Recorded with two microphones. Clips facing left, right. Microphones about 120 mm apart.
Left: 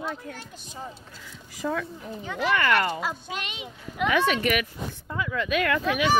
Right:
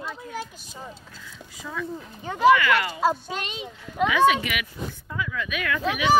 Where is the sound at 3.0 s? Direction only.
35° right (ahead or behind).